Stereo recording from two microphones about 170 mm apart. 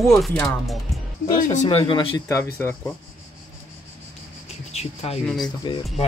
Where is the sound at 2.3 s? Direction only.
15° left (ahead or behind).